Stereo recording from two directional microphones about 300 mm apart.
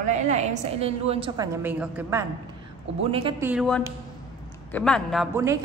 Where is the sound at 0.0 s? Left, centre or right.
Right; by 2.2 s centre.